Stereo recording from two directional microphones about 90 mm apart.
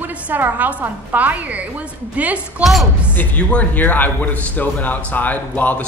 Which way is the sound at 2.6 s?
Centre (ahead or behind).